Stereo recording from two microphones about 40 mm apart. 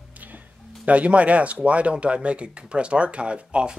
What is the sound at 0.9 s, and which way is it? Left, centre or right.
Speech, right.